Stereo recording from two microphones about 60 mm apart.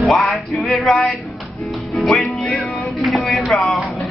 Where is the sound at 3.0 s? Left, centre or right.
Centre.